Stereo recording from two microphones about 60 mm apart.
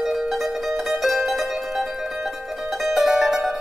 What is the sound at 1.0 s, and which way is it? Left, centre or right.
Mandolin, centre.